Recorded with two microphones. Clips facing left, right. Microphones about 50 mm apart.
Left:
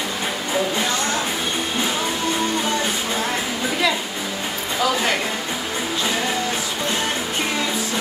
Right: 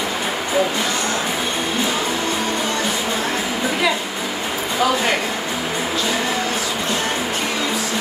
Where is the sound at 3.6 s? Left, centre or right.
Centre.